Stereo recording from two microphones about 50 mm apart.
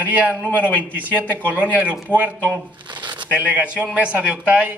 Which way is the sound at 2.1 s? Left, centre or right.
Right.